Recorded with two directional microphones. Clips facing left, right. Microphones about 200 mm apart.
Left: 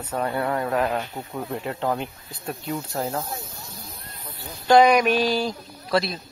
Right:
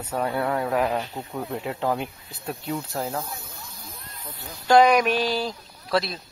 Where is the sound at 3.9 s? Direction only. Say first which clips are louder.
Left 1 dB; 50° left (ahead or behind).